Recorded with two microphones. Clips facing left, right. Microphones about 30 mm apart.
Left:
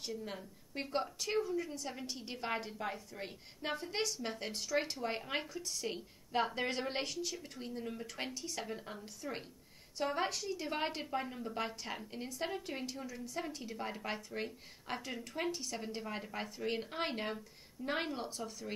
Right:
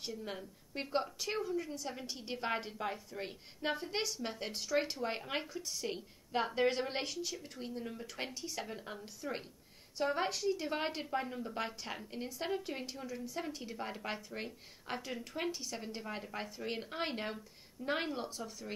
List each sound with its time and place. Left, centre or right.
0.2 s a woman's voice: centre